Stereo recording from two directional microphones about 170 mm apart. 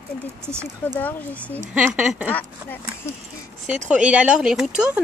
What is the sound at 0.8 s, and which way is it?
Speech, 10° left (ahead or behind).